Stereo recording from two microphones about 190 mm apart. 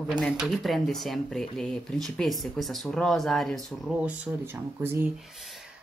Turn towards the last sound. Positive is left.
turn(degrees=0)  # may be behind; listen again after turning